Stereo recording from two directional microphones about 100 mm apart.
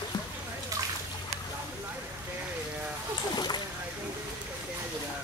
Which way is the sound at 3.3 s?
45° left (ahead or behind).